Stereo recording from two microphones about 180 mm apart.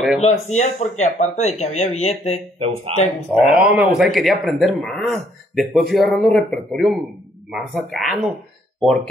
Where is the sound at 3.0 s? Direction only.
35° left (ahead or behind).